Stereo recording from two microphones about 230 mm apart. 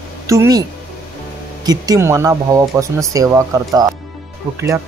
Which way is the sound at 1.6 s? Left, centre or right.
Centre.